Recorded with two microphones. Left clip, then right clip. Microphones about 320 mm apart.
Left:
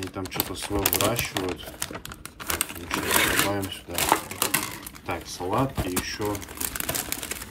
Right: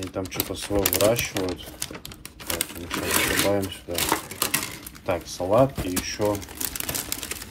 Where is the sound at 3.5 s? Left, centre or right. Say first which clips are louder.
Right 4 dB; centre.